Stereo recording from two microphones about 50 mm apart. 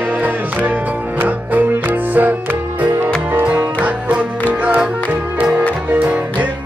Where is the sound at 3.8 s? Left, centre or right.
Right.